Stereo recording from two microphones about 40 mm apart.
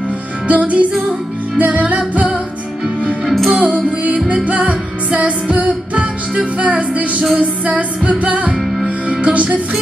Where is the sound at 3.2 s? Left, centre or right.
Centre.